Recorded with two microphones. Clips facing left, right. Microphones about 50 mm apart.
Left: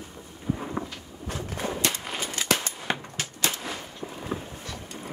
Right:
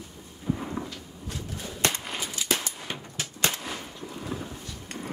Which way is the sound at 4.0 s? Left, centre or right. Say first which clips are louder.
Left 1 dB; left.